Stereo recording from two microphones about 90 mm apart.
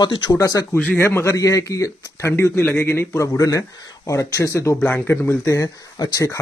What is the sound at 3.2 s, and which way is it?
Speech, 35° left (ahead or behind).